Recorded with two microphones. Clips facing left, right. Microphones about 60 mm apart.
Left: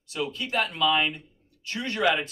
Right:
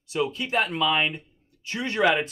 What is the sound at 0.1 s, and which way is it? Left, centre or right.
Speech, right.